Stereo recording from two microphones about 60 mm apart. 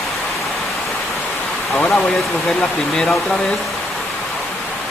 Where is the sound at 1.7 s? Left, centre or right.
Left.